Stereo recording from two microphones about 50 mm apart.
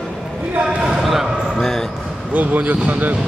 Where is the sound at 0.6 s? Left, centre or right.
Centre.